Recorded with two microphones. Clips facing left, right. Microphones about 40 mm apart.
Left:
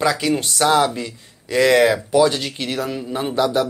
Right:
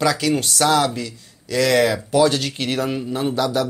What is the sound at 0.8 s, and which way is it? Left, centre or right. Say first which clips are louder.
Speech: even; left.